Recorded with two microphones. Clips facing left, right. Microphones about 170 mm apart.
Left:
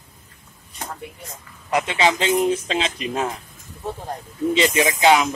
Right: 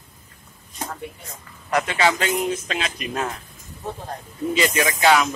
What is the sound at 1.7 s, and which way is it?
Speech, 20° left (ahead or behind).